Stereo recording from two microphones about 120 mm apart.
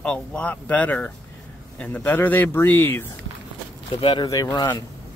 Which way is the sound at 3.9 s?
40° left (ahead or behind).